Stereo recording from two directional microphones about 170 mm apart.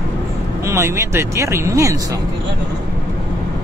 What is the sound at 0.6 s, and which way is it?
Speech, 15° right (ahead or behind).